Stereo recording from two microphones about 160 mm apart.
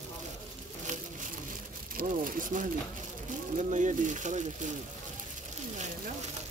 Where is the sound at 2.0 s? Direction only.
60° right (ahead or behind).